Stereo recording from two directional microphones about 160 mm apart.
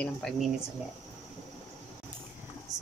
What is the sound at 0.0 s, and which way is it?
Speech, 5° left (ahead or behind).